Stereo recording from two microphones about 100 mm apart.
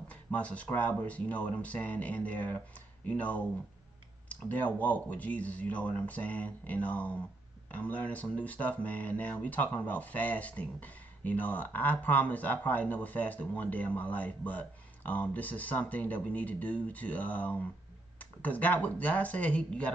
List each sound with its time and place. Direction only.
0.1 s speech: 15° left (ahead or behind)